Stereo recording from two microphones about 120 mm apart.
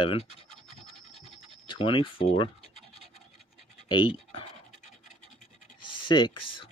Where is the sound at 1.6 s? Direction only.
45° left (ahead or behind).